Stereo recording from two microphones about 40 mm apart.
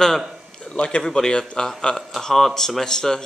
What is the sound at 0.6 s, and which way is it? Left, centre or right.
A man's voice, left.